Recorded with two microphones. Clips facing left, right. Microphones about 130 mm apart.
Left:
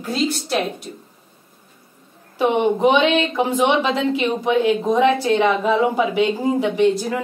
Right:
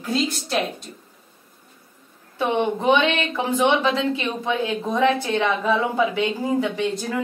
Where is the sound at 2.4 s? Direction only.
15° left (ahead or behind).